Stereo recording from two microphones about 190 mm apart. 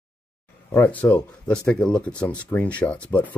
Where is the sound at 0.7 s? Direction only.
10° left (ahead or behind).